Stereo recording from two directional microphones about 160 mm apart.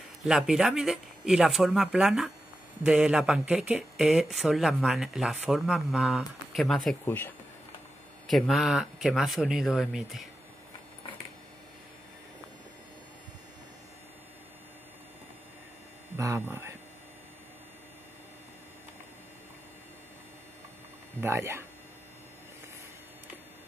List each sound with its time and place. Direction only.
0.2 s speech: 5° right (ahead or behind)
7.1 s speech: 15° left (ahead or behind)
8.3 s speech: centre (ahead or behind)
16.2 s speech: 20° right (ahead or behind)
21.2 s speech: 15° right (ahead or behind)